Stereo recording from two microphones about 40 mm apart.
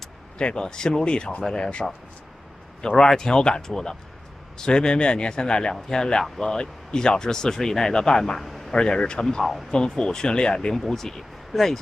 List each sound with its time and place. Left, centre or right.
0.4 s a man's voice: left
3.1 s a man's voice: centre
8.4 s a sound: centre
8.7 s a man's voice: centre
9.4 s speech: centre
9.7 s a man's voice: centre
10.7 s speech: centre